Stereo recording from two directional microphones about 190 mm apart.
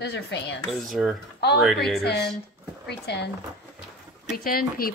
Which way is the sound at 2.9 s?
60° left (ahead or behind).